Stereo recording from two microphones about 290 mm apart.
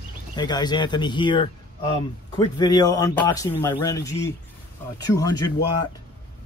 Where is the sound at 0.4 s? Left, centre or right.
Centre.